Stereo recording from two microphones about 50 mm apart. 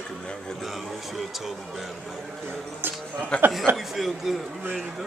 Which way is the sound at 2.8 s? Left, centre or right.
Right.